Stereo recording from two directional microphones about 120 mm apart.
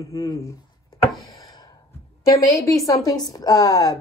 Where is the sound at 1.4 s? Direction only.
35° left (ahead or behind).